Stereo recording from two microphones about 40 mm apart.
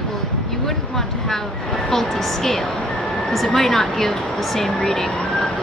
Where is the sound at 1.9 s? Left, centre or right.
Centre.